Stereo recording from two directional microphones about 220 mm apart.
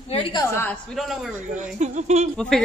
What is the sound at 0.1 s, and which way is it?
Speech, 20° left (ahead or behind).